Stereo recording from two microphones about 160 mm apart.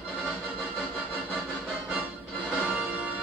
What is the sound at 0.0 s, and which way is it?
Music, 5° right (ahead or behind).